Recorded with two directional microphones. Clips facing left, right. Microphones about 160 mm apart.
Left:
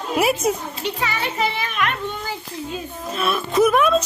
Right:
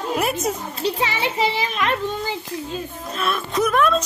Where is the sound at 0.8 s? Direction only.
25° right (ahead or behind).